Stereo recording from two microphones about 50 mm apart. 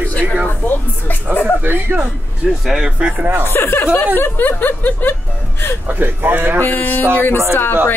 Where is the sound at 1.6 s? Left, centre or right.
Right.